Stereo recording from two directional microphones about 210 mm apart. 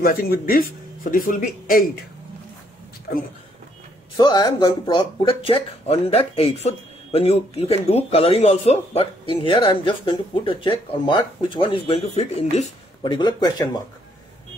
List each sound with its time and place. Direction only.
0.0 s speech: 45° left (ahead or behind)
3.1 s speech: 45° left (ahead or behind)
4.2 s speech: 20° left (ahead or behind)